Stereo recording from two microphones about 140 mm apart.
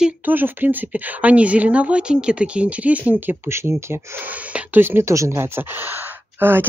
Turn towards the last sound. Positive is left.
turn(degrees=-15)  # may be behind; listen again after turning